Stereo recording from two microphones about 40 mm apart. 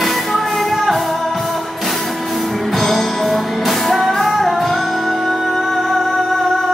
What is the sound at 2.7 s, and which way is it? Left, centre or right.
Music, centre.